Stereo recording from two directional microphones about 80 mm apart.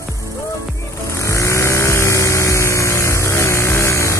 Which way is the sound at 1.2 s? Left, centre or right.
Left.